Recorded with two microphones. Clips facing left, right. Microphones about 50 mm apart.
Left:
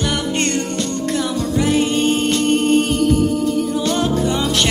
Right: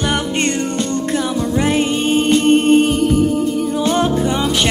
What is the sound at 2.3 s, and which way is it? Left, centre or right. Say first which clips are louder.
Music: right 6 dB; right.